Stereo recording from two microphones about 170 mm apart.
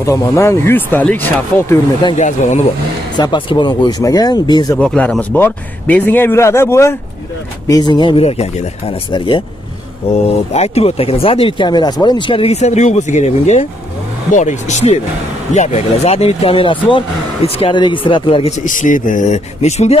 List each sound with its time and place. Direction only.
0.0 s a man's voice: 20° left (ahead or behind)
2.1 s speech: 45° left (ahead or behind)
3.2 s speech: 30° left (ahead or behind)
4.7 s a man's voice: 5° left (ahead or behind); by 18.7 s 35° left (ahead or behind)
18.7 s speech: 50° left (ahead or behind)